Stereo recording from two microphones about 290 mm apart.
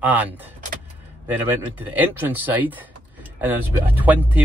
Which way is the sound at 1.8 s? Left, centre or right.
Centre.